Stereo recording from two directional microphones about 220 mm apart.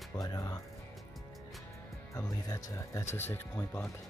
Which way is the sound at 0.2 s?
15° left (ahead or behind).